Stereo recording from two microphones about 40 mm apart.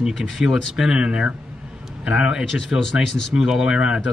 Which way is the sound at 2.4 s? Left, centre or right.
Centre.